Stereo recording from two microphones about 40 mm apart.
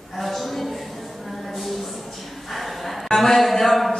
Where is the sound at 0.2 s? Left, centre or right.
Centre.